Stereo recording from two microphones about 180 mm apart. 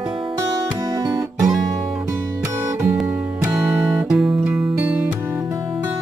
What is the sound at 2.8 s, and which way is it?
Music, 5° right (ahead or behind).